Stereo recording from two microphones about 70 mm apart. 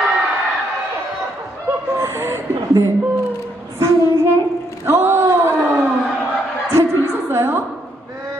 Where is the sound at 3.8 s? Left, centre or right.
Right.